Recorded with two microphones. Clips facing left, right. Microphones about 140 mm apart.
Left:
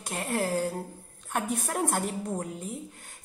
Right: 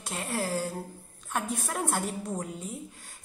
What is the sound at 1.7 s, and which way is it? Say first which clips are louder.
Speech: left 2 dB; 50° left (ahead or behind).